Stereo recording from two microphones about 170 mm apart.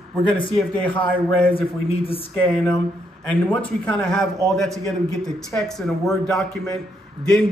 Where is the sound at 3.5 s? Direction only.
5° left (ahead or behind).